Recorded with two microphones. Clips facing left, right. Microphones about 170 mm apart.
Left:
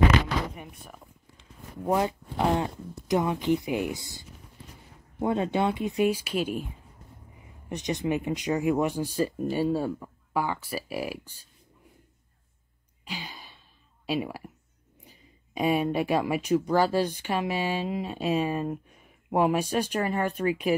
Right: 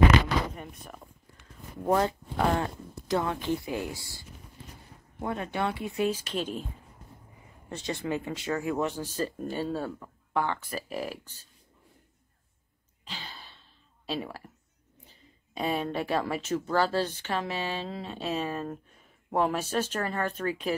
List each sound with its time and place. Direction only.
0.6 s speech: 5° left (ahead or behind)
7.7 s speech: 15° left (ahead or behind)
13.0 s a sound: 10° left (ahead or behind)
14.0 s speech: 10° left (ahead or behind)